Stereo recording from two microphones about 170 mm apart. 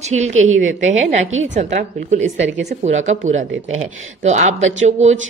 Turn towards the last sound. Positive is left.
turn(degrees=-45)  # may be behind; listen again after turning